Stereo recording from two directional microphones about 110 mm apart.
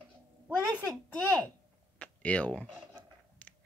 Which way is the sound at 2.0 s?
10° left (ahead or behind).